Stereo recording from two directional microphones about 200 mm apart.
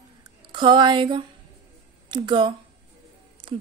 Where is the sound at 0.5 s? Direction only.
25° right (ahead or behind).